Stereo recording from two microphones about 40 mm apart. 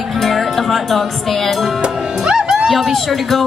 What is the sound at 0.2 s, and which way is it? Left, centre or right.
Speech, centre.